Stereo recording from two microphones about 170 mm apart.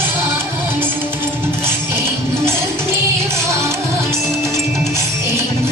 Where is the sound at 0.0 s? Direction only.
10° right (ahead or behind).